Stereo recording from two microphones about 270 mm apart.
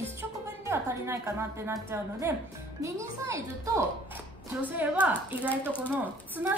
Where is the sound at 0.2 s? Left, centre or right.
Centre.